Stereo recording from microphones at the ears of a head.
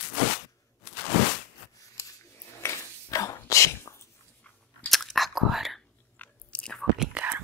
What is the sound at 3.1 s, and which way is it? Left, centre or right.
Whispering, left.